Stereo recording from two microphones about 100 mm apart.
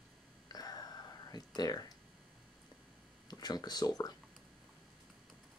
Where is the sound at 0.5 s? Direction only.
40° left (ahead or behind).